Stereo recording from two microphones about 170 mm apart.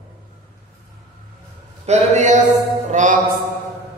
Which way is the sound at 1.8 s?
40° right (ahead or behind).